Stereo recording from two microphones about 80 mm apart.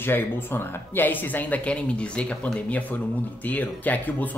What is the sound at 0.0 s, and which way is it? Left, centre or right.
Speech, left.